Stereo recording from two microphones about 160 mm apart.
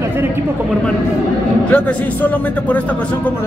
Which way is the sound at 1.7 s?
10° left (ahead or behind).